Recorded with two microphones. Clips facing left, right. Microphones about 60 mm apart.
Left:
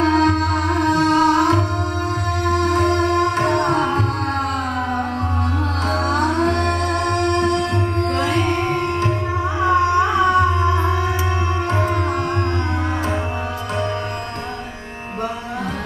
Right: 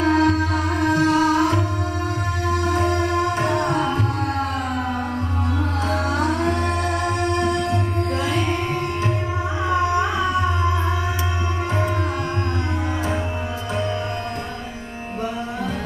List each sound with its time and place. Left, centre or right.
0.0 s music: left
5.9 s music: left
9.6 s music: left